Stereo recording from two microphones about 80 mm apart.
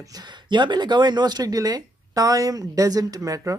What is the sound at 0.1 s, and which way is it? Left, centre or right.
Speech, right.